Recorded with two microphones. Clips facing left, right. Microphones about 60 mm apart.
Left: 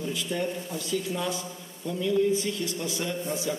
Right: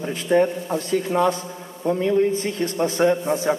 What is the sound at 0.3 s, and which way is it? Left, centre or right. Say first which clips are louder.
A man's voice: right 15 dB; right.